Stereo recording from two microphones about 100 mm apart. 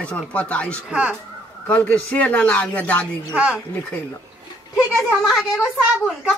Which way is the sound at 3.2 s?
10° right (ahead or behind).